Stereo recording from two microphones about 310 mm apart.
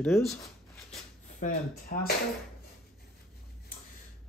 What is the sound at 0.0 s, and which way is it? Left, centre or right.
Speech, centre.